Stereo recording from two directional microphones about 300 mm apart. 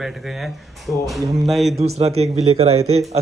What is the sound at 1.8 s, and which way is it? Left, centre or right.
Speech, right.